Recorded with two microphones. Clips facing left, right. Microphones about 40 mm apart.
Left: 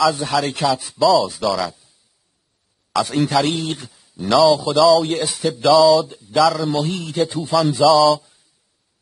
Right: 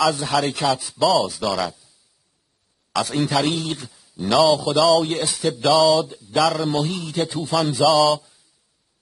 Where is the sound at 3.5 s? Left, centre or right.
Centre.